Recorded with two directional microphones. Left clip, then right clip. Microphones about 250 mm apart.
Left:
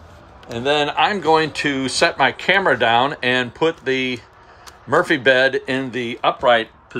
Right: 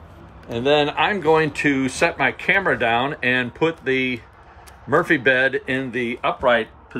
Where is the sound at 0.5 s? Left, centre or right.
Centre.